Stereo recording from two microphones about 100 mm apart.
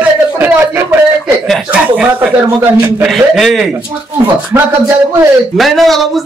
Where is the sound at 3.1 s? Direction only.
Centre (ahead or behind).